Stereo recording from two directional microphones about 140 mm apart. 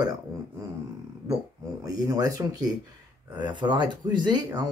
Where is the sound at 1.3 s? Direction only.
25° right (ahead or behind).